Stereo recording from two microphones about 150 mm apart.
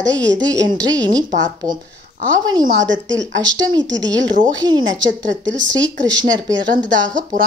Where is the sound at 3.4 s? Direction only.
25° right (ahead or behind).